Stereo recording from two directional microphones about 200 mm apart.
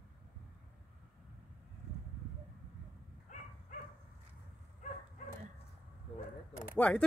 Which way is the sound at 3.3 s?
35° left (ahead or behind).